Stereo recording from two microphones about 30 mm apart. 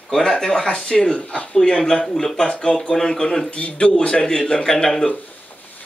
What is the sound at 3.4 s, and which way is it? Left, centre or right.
A man's voice, left.